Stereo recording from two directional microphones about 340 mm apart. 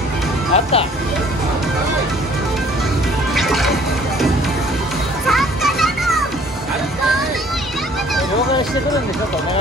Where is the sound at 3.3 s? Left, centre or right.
Centre.